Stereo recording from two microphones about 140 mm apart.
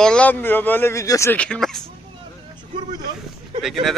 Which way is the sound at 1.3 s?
5° left (ahead or behind).